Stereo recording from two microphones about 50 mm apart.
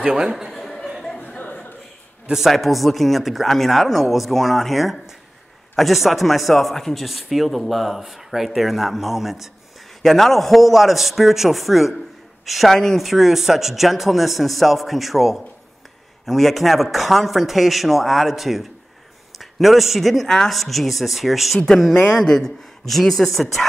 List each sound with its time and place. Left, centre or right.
0.1 s speech: centre
0.5 s a sound: centre
1.2 s chuckle: left
2.5 s speech: centre
12.7 s speech: centre
13.0 s speech: centre
22.1 s speech: centre